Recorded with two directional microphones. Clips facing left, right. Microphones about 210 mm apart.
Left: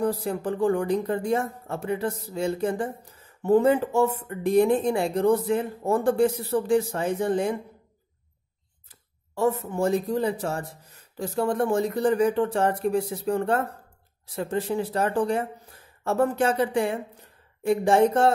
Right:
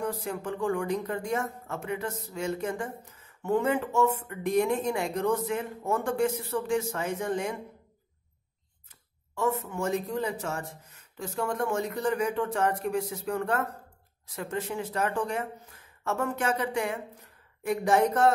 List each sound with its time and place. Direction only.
0.0 s speech: 35° left (ahead or behind)
9.3 s speech: 35° left (ahead or behind)